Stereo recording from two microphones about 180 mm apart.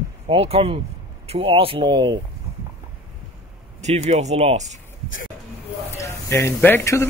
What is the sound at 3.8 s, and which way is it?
A man's voice, 40° right (ahead or behind).